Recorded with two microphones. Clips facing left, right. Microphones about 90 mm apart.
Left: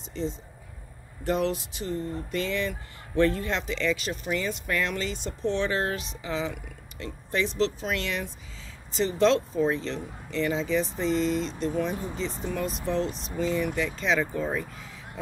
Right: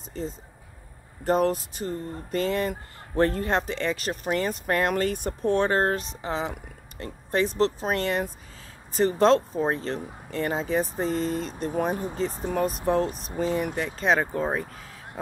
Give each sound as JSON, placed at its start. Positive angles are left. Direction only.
{"t": 0.1, "sound": "speech", "side_deg": -45}